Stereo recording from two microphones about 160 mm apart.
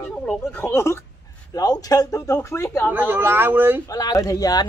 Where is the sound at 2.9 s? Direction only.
10° right (ahead or behind).